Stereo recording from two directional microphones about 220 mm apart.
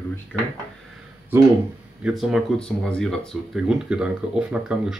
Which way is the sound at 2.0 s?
5° right (ahead or behind).